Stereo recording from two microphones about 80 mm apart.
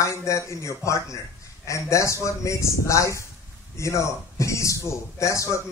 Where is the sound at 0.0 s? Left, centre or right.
Left.